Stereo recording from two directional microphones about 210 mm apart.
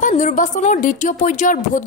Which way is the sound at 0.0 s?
35° left (ahead or behind).